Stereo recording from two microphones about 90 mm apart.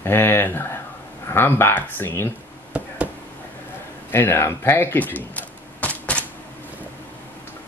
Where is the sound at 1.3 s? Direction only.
25° left (ahead or behind).